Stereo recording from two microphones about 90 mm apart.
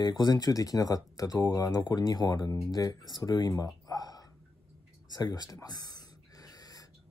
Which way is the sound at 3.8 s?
45° left (ahead or behind).